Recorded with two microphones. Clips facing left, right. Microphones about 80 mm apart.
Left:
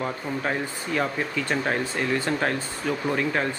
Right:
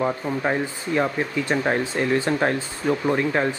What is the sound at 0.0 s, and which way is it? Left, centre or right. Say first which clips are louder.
Speech: right 5 dB; centre.